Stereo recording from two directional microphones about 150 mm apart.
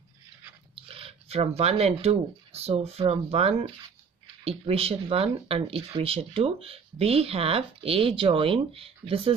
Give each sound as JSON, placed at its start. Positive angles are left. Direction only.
{"t": 0.7, "sound": "speech", "side_deg": -40}